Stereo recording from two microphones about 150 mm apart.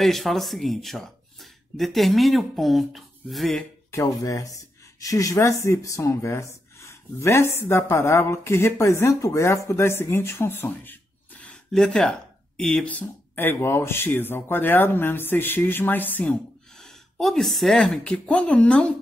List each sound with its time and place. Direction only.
0.0 s speech: centre (ahead or behind)
3.9 s speech: 20° left (ahead or behind)